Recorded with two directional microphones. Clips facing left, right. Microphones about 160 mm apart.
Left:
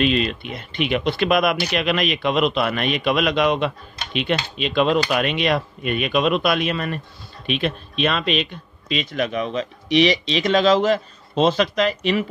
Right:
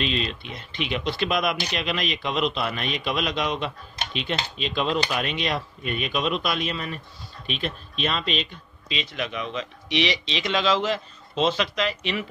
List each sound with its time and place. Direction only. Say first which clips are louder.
0.0 s speech: left 7 dB; 60° left (ahead or behind); by 12.3 s 40° left (ahead or behind)